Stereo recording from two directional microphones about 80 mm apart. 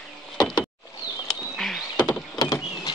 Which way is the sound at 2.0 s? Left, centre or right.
Left.